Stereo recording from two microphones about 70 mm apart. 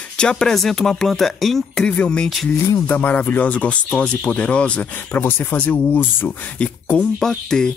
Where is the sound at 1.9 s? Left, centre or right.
Centre.